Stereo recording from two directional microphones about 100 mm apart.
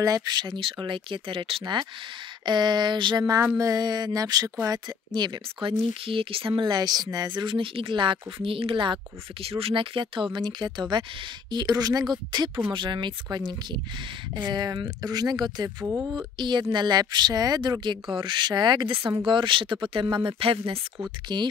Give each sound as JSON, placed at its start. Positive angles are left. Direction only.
{"t": 0.0, "sound": "speech", "side_deg": -40}
{"t": 1.6, "sound": "speech", "side_deg": -50}
{"t": 3.5, "sound": "a sound", "side_deg": -35}
{"t": 4.6, "sound": "speech", "side_deg": -45}
{"t": 11.5, "sound": "a sound", "side_deg": -40}
{"t": 12.7, "sound": "speech", "side_deg": -55}
{"t": 15.8, "sound": "speech", "side_deg": -25}
{"t": 16.1, "sound": "speech", "side_deg": -45}
{"t": 21.3, "sound": "speech", "side_deg": -45}